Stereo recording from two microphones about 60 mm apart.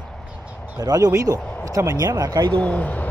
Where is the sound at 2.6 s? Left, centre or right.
Left.